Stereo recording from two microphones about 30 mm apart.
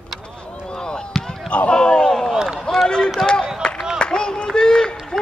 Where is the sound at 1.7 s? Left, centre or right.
Left.